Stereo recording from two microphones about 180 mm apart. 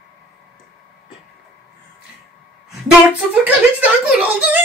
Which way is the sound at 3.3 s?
5° right (ahead or behind).